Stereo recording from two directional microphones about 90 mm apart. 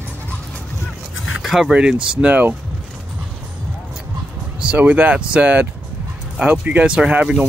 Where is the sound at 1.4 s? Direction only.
5° right (ahead or behind).